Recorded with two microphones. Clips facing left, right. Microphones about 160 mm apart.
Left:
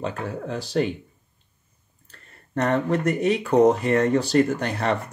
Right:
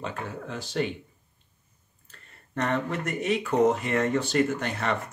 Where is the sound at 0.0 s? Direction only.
40° left (ahead or behind).